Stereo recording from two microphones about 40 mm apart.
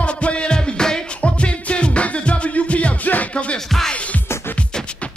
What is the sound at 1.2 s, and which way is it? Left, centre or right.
Music, left.